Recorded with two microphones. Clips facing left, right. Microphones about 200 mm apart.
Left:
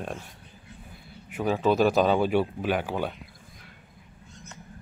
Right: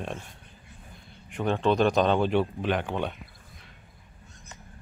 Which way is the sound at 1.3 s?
5° left (ahead or behind).